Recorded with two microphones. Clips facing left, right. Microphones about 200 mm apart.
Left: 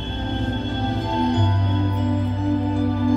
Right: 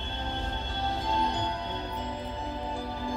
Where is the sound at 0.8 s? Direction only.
55° left (ahead or behind).